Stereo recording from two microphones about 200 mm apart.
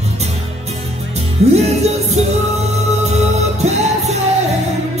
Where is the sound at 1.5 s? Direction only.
35° right (ahead or behind).